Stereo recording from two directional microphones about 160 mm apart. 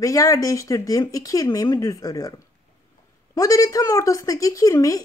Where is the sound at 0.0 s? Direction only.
20° left (ahead or behind).